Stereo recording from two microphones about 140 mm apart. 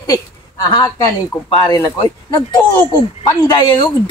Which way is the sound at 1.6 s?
30° left (ahead or behind).